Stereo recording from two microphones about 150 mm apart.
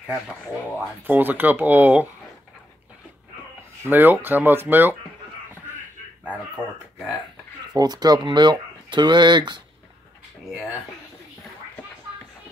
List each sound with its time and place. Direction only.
1.0 s speech: 10° right (ahead or behind)
3.8 s speech: 15° right (ahead or behind)
6.2 s speech: 10° right (ahead or behind)
7.7 s speech: 25° right (ahead or behind)